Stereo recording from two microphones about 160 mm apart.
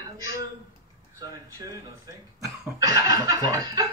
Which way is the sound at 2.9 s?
25° right (ahead or behind).